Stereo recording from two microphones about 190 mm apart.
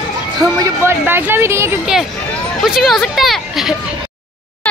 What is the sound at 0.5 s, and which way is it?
Speech, 15° right (ahead or behind).